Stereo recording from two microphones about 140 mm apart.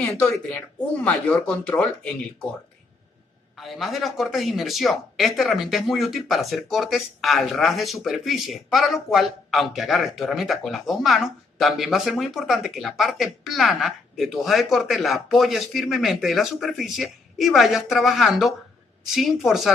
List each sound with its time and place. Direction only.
0.2 s speech: 10° left (ahead or behind)
3.5 s speech: centre (ahead or behind)